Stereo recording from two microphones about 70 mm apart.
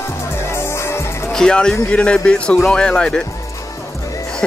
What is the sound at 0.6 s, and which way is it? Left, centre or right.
Music, left.